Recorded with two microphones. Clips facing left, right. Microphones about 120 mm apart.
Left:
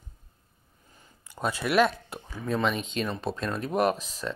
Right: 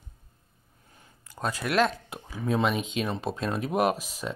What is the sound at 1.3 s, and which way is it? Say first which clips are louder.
Speech: left 2 dB; 5° left (ahead or behind).